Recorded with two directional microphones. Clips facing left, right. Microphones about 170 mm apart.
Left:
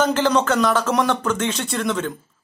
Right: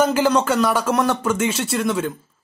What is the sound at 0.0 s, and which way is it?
Speech, 5° right (ahead or behind).